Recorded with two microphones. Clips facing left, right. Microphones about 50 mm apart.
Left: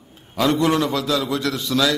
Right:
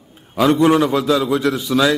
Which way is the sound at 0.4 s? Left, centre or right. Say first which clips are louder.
Right 5 dB; centre.